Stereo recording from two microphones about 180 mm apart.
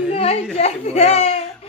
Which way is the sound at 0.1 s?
35° left (ahead or behind).